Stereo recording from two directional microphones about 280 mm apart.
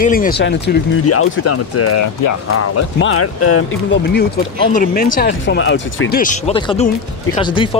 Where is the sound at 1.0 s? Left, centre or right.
Left.